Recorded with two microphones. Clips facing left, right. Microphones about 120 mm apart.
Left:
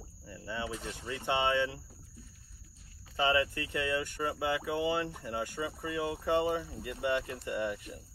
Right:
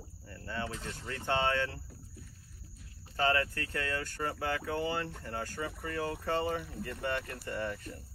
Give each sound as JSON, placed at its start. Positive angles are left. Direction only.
{"t": 0.3, "sound": "speech", "side_deg": 15}
{"t": 3.2, "sound": "speech", "side_deg": 15}